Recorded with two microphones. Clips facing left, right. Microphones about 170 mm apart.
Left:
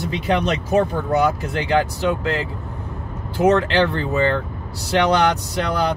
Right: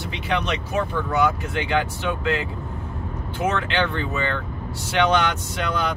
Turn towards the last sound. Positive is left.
turn(degrees=35)  # may be behind; listen again after turning